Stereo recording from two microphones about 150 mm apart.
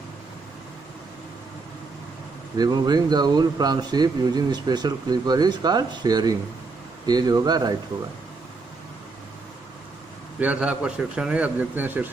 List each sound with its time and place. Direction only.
2.5 s speech: 25° right (ahead or behind)
10.4 s a man's voice: 10° right (ahead or behind)